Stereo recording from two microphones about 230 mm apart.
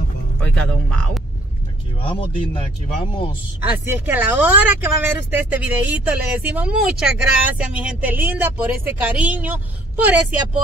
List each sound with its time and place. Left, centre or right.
0.4 s speech: centre
2.0 s speech: left
3.9 s speech: centre